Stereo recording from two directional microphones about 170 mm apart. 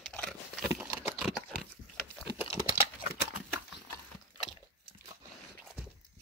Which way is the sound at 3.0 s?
60° left (ahead or behind).